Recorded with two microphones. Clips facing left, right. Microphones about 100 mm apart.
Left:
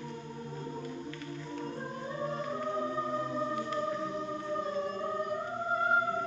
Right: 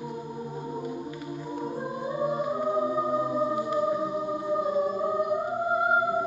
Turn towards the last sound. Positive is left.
turn(degrees=-15)  # may be behind; listen again after turning